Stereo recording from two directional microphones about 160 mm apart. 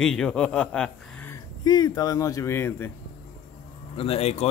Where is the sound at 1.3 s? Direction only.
25° left (ahead or behind).